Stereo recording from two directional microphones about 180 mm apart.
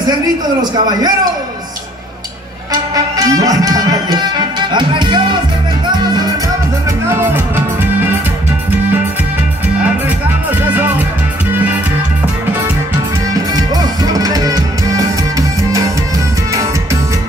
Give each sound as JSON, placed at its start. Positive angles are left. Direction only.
{"t": 0.6, "sound": "a man's voice", "side_deg": -20}
{"t": 2.7, "sound": "music", "side_deg": -20}
{"t": 7.1, "sound": "music", "side_deg": -15}
{"t": 10.0, "sound": "music", "side_deg": -10}
{"t": 13.3, "sound": "music", "side_deg": -20}